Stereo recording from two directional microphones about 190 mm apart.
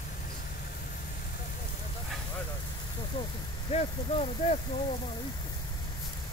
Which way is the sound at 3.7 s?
35° left (ahead or behind).